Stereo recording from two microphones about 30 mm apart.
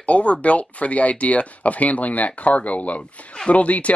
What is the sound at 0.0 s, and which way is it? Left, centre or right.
Speech, left.